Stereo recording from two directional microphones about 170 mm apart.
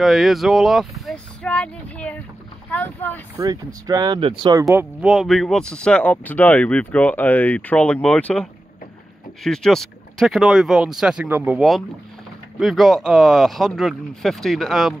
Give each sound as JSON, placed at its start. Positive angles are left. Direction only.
{"t": 0.0, "sound": "speech", "side_deg": 0}
{"t": 3.3, "sound": "speech", "side_deg": -20}
{"t": 5.0, "sound": "speech", "side_deg": 0}